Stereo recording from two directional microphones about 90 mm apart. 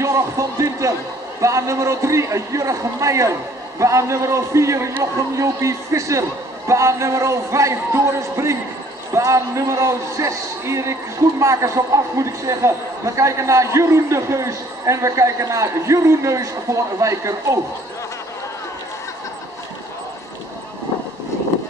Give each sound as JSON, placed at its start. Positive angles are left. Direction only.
{"t": 0.0, "sound": "a man's voice", "side_deg": -35}